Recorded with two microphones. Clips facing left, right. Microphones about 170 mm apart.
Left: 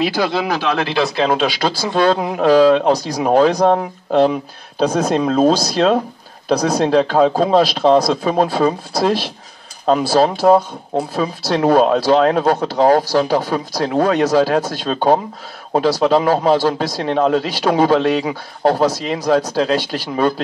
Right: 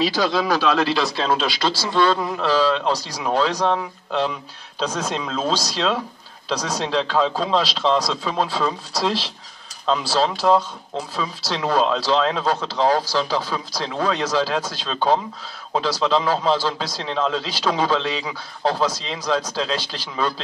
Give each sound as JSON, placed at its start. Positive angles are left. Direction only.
{"t": 0.0, "sound": "a man's voice", "side_deg": 55}